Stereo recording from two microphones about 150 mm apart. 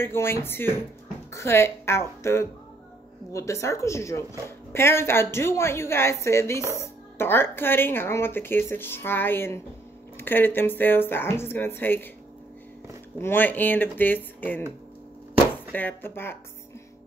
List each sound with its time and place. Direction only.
0.0 s speech: 15° left (ahead or behind)
13.2 s speech: 15° left (ahead or behind)
15.7 s speech: 10° left (ahead or behind)